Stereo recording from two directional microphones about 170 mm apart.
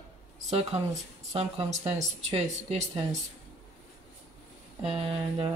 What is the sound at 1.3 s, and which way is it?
Speech, 40° right (ahead or behind).